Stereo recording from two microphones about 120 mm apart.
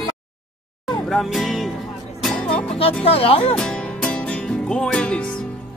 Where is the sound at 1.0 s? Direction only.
Centre (ahead or behind).